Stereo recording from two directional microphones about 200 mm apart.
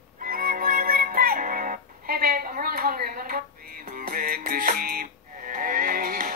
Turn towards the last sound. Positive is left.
turn(degrees=-45)  # may be behind; listen again after turning